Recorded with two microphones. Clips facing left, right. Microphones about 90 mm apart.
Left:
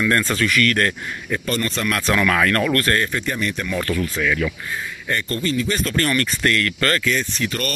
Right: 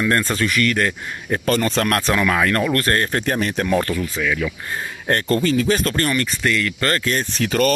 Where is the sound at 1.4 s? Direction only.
90° right.